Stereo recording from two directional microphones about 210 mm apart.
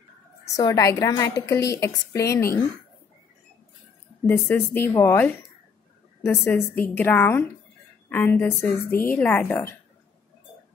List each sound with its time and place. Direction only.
0.6 s a woman's voice: 15° left (ahead or behind)
4.3 s a woman's voice: 10° left (ahead or behind)